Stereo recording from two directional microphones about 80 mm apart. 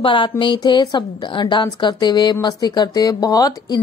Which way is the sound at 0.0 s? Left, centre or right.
Left.